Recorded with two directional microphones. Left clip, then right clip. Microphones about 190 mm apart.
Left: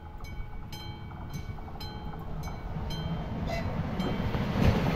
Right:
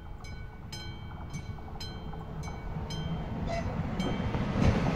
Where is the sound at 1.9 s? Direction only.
65° left (ahead or behind); by 4.9 s 45° left (ahead or behind).